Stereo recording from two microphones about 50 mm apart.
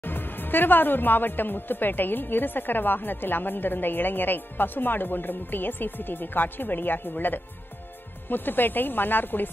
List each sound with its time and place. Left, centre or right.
0.0 s a woman's voice: left